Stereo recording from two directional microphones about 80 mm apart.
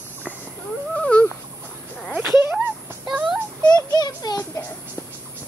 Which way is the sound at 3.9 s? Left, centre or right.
Left.